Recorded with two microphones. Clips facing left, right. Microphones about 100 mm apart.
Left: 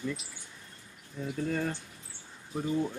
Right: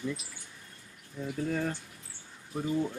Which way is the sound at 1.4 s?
5° right (ahead or behind).